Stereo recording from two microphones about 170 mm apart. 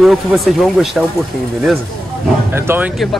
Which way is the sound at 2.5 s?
10° right (ahead or behind).